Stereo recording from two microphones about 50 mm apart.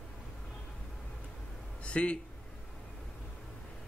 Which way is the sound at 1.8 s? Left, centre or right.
Left.